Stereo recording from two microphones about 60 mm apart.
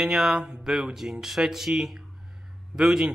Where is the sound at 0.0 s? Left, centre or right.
Centre.